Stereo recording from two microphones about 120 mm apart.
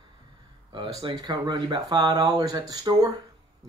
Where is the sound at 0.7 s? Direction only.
40° right (ahead or behind).